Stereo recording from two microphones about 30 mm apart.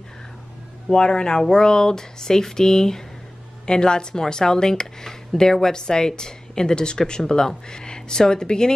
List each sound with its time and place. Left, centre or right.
0.9 s speech: left
3.6 s speech: left